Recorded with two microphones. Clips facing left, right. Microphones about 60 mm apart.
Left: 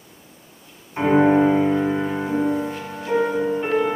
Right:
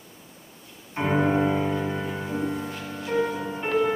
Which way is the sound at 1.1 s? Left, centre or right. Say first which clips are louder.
Left 7 dB; left.